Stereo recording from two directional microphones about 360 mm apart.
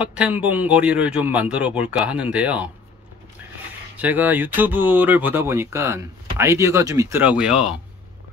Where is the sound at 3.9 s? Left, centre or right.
Centre.